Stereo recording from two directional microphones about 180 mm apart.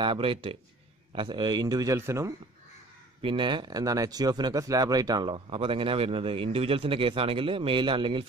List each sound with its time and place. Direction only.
0.0 s speech: 30° right (ahead or behind)
3.2 s speech: 25° right (ahead or behind)